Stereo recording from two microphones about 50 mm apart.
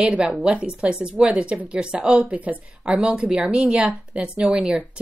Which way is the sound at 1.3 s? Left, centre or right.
Right.